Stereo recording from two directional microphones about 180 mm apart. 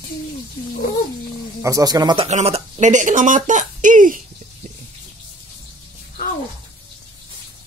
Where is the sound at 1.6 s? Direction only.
20° right (ahead or behind).